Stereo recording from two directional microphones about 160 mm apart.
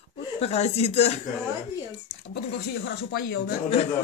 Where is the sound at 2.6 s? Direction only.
90° left.